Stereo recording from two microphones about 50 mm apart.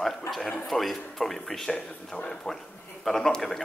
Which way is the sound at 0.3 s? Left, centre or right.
Centre.